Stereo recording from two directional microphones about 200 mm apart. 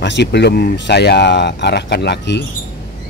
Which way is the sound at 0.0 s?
60° left (ahead or behind).